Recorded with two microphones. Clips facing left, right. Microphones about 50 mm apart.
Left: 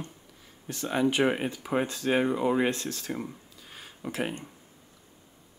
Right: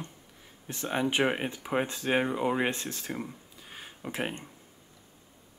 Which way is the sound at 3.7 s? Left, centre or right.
Right.